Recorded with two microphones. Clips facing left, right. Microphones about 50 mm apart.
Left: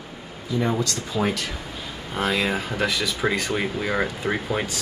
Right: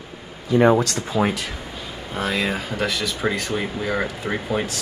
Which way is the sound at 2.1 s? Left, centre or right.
Centre.